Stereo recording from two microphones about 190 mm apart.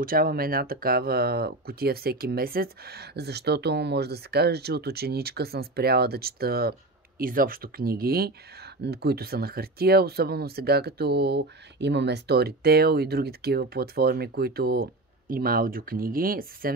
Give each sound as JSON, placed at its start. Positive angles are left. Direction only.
{"t": 0.0, "sound": "speech", "side_deg": -50}